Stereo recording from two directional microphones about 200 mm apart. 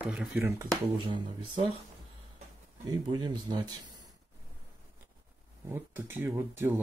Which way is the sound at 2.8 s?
20° right (ahead or behind).